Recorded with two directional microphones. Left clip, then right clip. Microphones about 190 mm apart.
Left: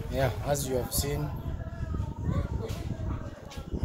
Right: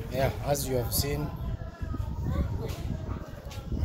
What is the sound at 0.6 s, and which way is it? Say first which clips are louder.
Speech: even; 40° right (ahead or behind).